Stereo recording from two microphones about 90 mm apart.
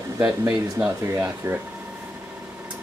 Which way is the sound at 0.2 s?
15° right (ahead or behind).